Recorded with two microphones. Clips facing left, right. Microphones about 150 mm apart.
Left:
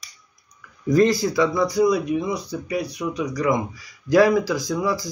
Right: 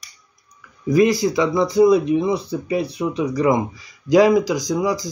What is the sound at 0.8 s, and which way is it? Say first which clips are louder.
Speech: right 2 dB; 10° right (ahead or behind).